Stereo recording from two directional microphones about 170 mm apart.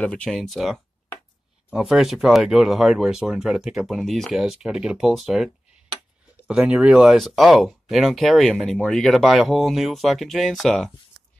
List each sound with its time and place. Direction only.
0.0 s speech: 5° left (ahead or behind)